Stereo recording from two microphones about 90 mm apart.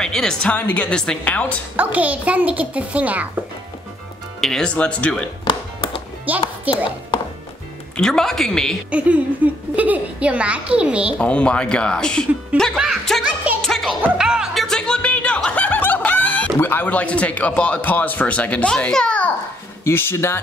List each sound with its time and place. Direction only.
0.0 s a man's voice: 5° left (ahead or behind)
1.8 s a woman's voice: 15° right (ahead or behind)
4.4 s a man's voice: 5° left (ahead or behind)
5.4 s music: 65° left (ahead or behind)
6.3 s a woman's voice: 20° right (ahead or behind)
7.9 s a woman's voice: 5° left (ahead or behind)
8.9 s a woman's voice: 15° right (ahead or behind)
11.1 s a man's voice: 15° left (ahead or behind)
13.6 s music: 5° left (ahead or behind)
14.1 s music: 10° right (ahead or behind); by 16.5 s 15° left (ahead or behind)
16.5 s a man's voice: 20° left (ahead or behind)
19.8 s speech: 25° left (ahead or behind)